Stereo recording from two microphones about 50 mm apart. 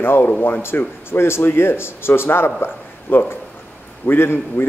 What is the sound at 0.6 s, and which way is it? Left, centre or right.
Speech, left.